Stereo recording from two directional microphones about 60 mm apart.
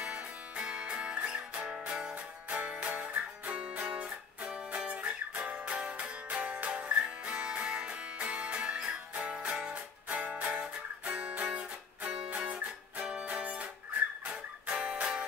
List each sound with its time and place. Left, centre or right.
0.0 s music: centre